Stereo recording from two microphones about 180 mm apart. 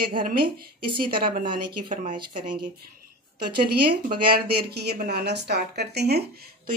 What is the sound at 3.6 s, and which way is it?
Speech, 60° right (ahead or behind).